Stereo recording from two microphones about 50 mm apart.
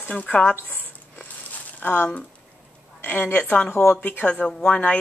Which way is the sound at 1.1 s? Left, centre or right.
Left.